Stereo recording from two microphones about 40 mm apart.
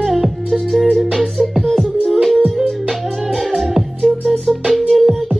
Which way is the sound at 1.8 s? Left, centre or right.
Left.